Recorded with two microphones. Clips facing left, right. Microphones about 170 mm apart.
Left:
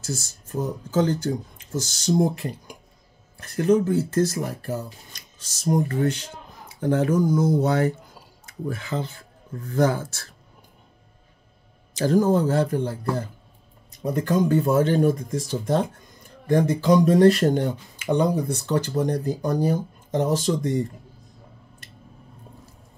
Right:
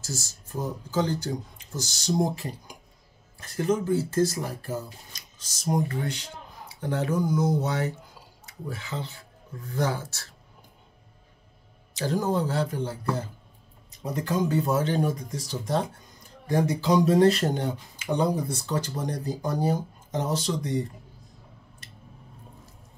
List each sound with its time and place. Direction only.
0.0 s speech: 55° left (ahead or behind)
12.0 s speech: 45° left (ahead or behind)
14.0 s speech: 55° left (ahead or behind)